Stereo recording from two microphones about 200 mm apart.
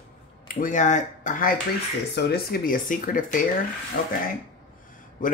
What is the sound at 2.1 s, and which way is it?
Speech, 50° left (ahead or behind).